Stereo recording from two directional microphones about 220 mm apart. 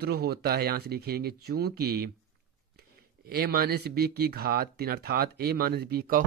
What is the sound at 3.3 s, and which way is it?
Speech, 45° right (ahead or behind).